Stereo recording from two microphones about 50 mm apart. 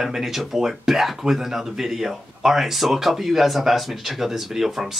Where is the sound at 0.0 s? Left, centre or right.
Centre.